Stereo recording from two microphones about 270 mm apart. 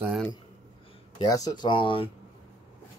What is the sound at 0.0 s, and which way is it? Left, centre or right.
Speech, centre.